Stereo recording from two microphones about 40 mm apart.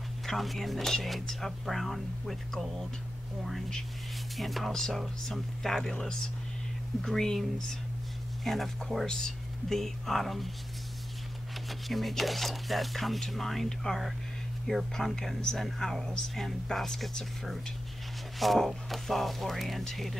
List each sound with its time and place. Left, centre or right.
0.3 s speech: centre
4.4 s speech: centre
7.0 s speech: centre
11.9 s speech: centre
18.4 s speech: centre